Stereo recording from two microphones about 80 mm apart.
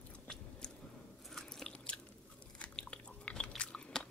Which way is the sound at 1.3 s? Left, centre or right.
Centre.